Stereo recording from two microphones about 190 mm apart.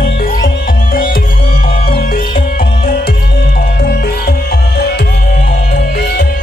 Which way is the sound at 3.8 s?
55° left (ahead or behind).